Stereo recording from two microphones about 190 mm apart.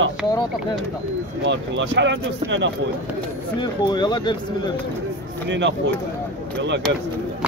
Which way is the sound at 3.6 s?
25° left (ahead or behind).